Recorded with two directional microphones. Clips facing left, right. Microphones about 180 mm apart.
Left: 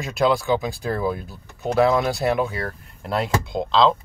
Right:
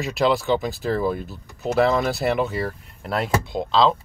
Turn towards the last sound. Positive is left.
turn(degrees=0)  # may be behind; listen again after turning